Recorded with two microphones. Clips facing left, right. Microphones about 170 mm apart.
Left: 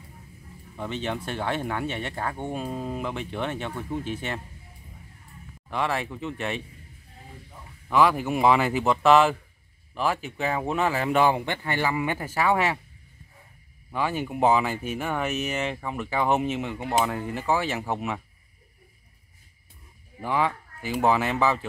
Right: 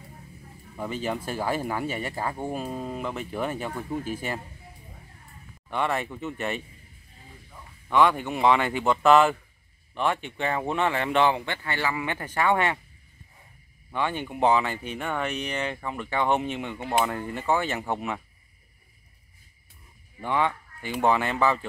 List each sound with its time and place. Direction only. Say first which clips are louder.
0.7 s speech: right 1 dB; 5° right (ahead or behind)
5.7 s speech: even; centre (ahead or behind)
7.9 s speech: left 1 dB; 5° left (ahead or behind)
13.9 s speech: left 1 dB; 5° left (ahead or behind)
20.2 s speech: even; 5° left (ahead or behind)